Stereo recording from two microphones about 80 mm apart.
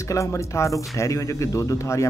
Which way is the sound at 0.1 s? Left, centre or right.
Left.